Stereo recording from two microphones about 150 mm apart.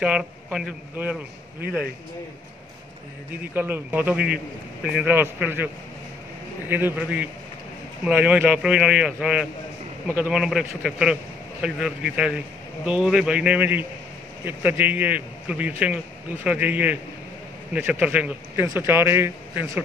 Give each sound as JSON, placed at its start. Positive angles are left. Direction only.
{"t": 0.0, "sound": "a man's voice", "side_deg": -5}
{"t": 3.5, "sound": "a man's voice", "side_deg": -15}
{"t": 5.1, "sound": "a man's voice", "side_deg": -15}
{"t": 6.7, "sound": "a man's voice", "side_deg": -15}